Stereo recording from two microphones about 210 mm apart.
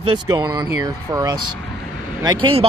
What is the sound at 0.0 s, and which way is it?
Speech, 20° right (ahead or behind).